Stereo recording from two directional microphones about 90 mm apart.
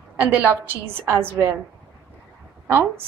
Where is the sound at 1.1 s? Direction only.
25° right (ahead or behind).